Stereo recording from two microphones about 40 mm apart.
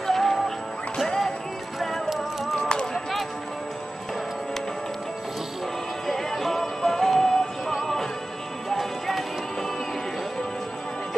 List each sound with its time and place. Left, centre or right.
0.0 s music: centre
2.7 s run: left
6.0 s music: centre